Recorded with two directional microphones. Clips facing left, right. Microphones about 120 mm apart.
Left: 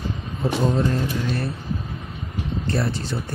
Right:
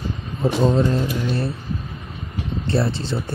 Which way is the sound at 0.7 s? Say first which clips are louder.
Right 3 dB; 25° right (ahead or behind).